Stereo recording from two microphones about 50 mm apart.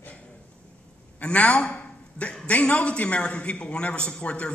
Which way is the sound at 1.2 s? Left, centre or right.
Left.